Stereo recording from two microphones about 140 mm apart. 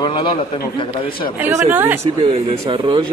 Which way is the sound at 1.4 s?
15° right (ahead or behind).